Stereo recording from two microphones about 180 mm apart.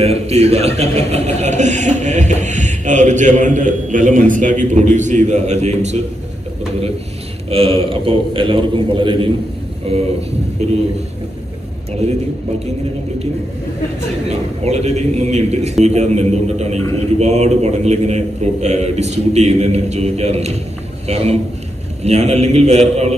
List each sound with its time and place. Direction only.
0.0 s a man's voice: 35° right (ahead or behind)
7.4 s a man's voice: 30° right (ahead or behind)
10.6 s a man's voice: 35° right (ahead or behind)
14.3 s a man's voice: 35° right (ahead or behind)